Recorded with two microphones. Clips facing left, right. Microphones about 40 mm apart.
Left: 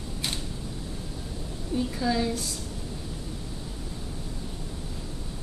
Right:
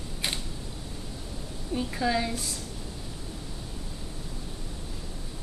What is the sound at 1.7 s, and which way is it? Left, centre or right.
Speech, centre.